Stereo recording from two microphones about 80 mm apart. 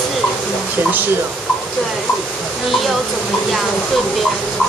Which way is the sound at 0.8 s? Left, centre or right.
Right.